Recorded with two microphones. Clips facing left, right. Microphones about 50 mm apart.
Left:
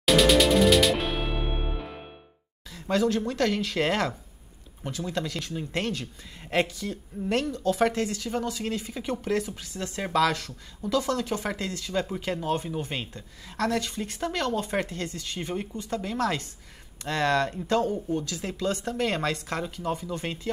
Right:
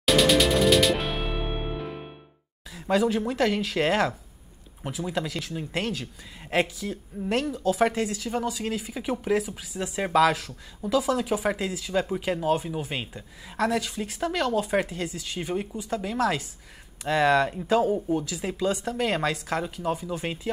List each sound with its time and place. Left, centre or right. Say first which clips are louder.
0.0 s music: left 1 dB; centre
2.7 s speech: right 1 dB; centre